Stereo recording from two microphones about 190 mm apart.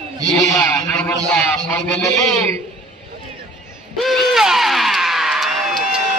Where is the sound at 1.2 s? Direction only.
10° left (ahead or behind).